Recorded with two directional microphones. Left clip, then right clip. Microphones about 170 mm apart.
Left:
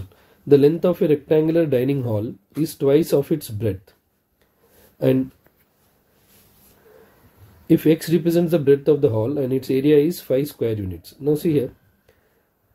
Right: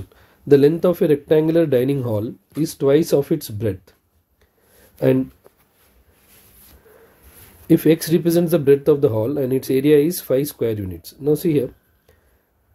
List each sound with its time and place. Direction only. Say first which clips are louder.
0.1 s speech: right 1 dB; 15° right (ahead or behind)
7.6 s speech: right 2 dB; 15° right (ahead or behind)